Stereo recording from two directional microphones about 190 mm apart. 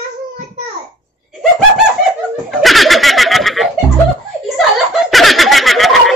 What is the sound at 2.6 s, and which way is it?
Snicker, centre (ahead or behind).